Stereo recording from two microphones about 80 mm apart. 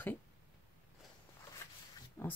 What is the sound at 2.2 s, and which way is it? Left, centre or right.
Speech, left.